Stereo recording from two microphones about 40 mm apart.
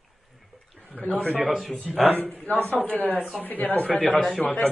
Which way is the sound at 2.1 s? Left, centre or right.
Left.